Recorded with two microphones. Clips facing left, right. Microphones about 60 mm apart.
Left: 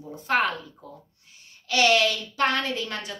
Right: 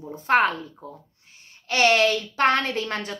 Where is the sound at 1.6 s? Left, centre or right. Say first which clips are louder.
Right 2 dB; right.